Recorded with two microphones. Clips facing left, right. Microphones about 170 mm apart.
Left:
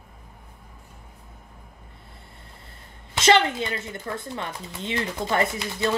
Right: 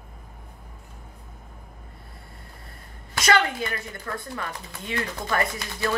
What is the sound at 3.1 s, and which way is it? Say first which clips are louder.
Speech: left 3 dB; 25° left (ahead or behind).